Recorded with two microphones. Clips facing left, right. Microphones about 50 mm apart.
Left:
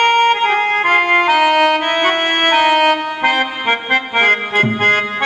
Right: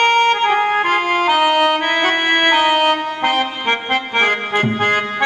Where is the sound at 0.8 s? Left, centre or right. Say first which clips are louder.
Left 4 dB; left.